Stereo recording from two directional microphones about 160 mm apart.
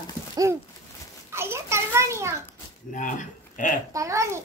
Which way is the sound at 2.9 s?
55° left (ahead or behind).